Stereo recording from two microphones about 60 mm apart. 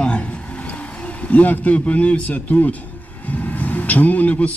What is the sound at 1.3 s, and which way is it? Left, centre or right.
A man's voice, left.